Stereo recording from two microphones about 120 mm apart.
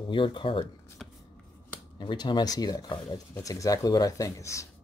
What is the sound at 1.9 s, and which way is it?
Speech, 40° left (ahead or behind).